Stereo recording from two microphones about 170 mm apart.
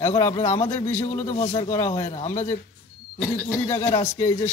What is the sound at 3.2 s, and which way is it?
Speech, 5° left (ahead or behind).